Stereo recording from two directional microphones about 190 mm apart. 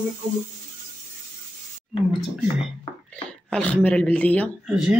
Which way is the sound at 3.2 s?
5° left (ahead or behind).